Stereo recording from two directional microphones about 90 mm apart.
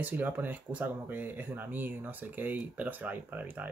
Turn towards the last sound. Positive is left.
turn(degrees=-20)  # may be behind; listen again after turning